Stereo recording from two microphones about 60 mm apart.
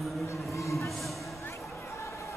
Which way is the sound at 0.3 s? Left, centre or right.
Left.